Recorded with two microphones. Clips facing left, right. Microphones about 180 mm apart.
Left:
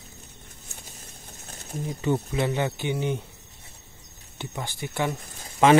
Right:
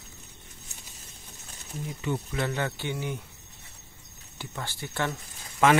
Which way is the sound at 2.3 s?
20° left (ahead or behind).